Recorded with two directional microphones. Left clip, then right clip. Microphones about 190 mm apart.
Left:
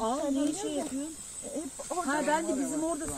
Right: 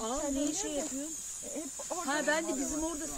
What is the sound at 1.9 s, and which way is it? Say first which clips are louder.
Speech: left 3 dB; 15° left (ahead or behind).